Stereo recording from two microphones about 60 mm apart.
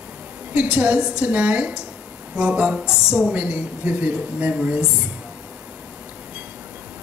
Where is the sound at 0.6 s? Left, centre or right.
Right.